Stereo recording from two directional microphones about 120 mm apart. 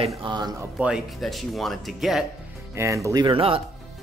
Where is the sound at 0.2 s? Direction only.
40° right (ahead or behind).